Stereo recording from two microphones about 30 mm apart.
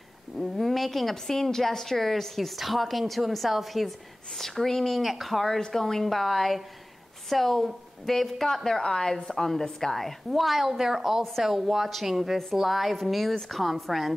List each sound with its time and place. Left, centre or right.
0.4 s a sound: centre
1.1 s a woman's voice: centre
4.4 s a woman's voice: centre
5.0 s a woman's voice: centre
5.7 s a woman's voice: centre
8.8 s a woman's voice: left
9.1 s a woman's voice: centre
10.0 s a woman's voice: centre